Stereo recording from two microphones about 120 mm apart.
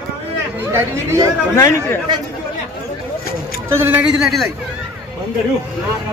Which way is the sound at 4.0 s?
Centre (ahead or behind).